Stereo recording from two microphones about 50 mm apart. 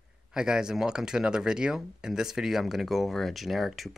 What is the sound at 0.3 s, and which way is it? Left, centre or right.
Speech, centre.